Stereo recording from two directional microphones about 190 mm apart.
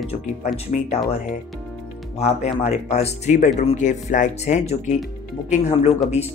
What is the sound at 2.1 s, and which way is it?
Speech, 35° left (ahead or behind).